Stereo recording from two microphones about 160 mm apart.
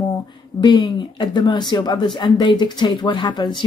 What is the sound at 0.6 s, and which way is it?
Speech, 30° left (ahead or behind).